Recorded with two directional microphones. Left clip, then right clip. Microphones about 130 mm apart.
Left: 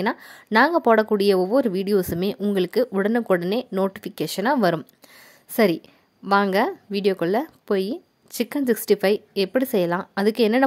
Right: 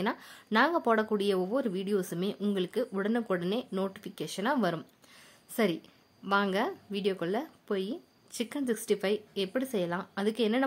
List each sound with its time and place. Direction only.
0.0 s a woman's voice: 50° left (ahead or behind)